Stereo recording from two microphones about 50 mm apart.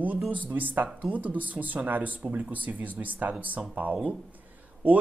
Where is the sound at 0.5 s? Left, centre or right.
Right.